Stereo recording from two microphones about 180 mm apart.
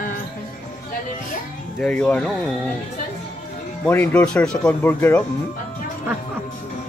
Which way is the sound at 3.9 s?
10° left (ahead or behind).